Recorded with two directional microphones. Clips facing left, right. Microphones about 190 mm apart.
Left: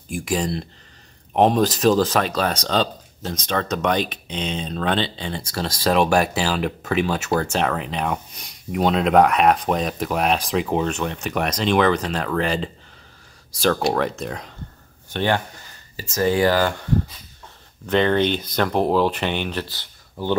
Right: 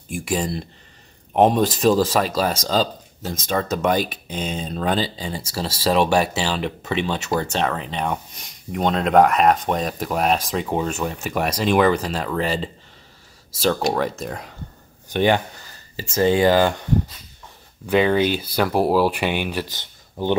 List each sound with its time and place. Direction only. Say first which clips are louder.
0.1 s speech: even; 5° right (ahead or behind)
16.0 s speech: right 2 dB; 25° right (ahead or behind)
17.8 s speech: right 1 dB; 5° right (ahead or behind)